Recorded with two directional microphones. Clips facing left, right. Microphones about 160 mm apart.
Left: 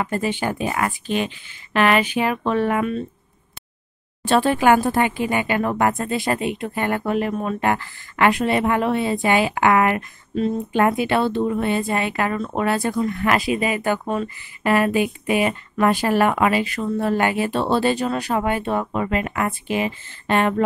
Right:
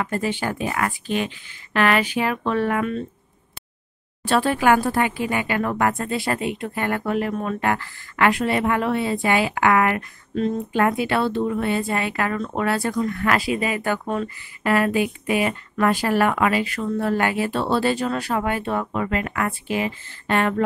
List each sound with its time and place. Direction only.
0.0 s speech: 20° left (ahead or behind)
4.2 s speech: 20° left (ahead or behind)